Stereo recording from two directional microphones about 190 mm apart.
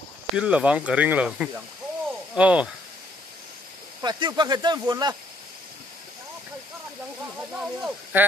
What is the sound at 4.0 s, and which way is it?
Speech, 20° right (ahead or behind).